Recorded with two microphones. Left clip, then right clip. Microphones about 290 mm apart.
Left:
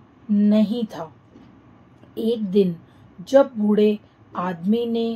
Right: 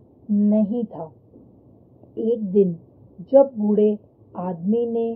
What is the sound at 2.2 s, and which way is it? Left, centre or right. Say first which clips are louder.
Speech: right 1 dB; left.